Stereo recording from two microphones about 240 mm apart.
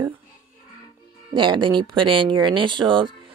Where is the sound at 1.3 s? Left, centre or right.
Right.